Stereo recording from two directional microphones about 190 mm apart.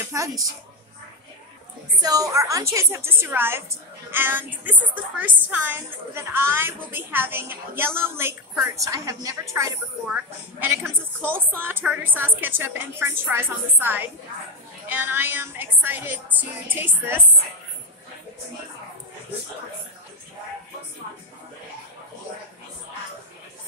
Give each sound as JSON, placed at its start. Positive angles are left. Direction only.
{"t": 0.1, "sound": "a woman's voice", "side_deg": -15}
{"t": 2.0, "sound": "a woman's voice", "side_deg": -20}